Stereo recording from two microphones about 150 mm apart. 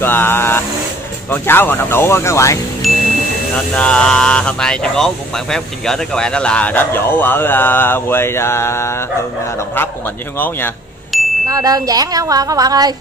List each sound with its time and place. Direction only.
0.0 s a sound: 15° left (ahead or behind)
1.3 s speech: 15° left (ahead or behind)
2.8 s music: centre (ahead or behind)
3.7 s speech: 5° left (ahead or behind)
10.3 s speech: 15° left (ahead or behind)
11.1 s wind chime: centre (ahead or behind)
11.4 s speech: 25° right (ahead or behind)